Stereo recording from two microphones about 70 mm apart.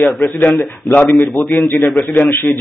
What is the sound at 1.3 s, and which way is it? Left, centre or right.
Speech, left.